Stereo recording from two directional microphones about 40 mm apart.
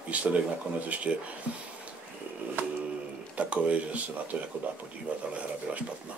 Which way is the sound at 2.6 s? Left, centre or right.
Right.